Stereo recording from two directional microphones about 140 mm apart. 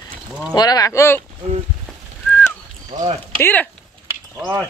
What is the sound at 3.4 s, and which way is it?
Speech, 15° left (ahead or behind).